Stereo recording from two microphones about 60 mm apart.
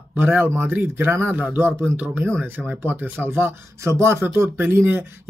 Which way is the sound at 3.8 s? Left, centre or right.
Right.